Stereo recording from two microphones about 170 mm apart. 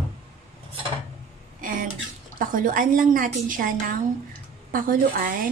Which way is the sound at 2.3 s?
55° right (ahead or behind).